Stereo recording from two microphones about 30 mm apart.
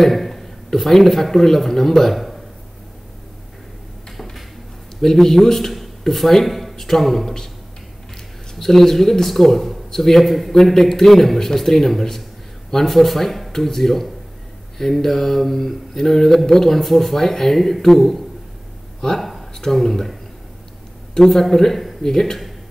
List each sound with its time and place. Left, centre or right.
0.0 s a sound: centre
0.7 s mantra: centre
5.0 s mantra: centre
8.5 s mantra: centre
19.1 s a sound: centre
19.6 s mantra: centre